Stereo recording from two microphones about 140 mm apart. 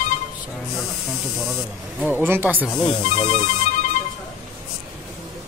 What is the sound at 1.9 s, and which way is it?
Speech, 15° right (ahead or behind).